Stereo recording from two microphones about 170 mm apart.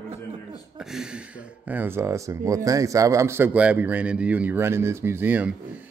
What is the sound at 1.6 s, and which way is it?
Speech, 10° right (ahead or behind).